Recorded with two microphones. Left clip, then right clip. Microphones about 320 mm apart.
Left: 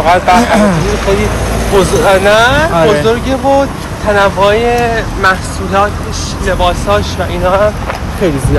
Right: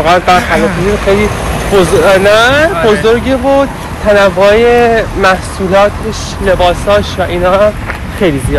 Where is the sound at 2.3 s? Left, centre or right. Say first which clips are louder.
Right 1 dB; right.